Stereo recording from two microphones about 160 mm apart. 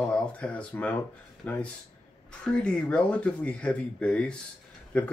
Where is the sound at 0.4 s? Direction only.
10° left (ahead or behind).